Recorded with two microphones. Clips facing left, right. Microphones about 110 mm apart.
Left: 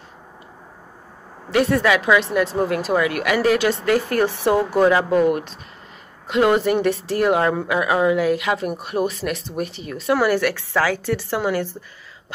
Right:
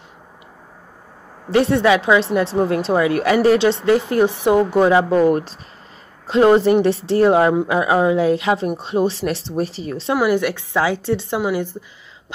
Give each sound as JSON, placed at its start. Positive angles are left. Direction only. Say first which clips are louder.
{"t": 1.5, "sound": "speech", "louder": "right 3 dB", "side_deg": -30}
{"t": 10.1, "sound": "a woman's voice", "louder": "right 1 dB", "side_deg": -15}